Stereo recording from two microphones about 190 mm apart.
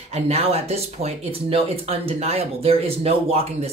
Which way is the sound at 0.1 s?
30° right (ahead or behind).